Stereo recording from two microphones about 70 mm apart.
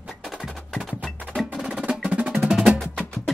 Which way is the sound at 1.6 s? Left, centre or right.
Centre.